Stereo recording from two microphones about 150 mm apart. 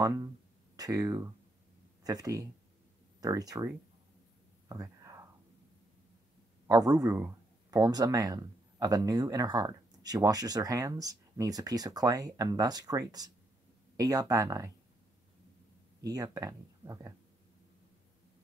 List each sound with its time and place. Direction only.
0.0 s speech: 20° right (ahead or behind)
4.6 s whispering: 20° right (ahead or behind)
6.7 s speech: 25° right (ahead or behind)
16.0 s speech: 25° right (ahead or behind)